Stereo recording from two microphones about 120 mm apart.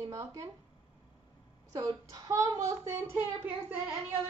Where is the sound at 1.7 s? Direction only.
30° right (ahead or behind).